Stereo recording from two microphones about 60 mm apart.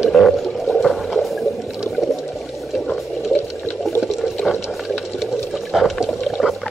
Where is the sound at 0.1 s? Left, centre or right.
Centre.